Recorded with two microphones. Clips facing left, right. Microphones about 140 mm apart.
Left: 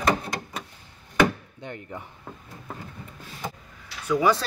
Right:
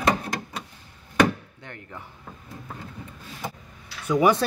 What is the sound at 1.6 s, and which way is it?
Speech, 20° left (ahead or behind).